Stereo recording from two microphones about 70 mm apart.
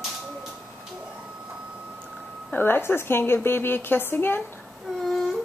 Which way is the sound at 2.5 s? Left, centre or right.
Left.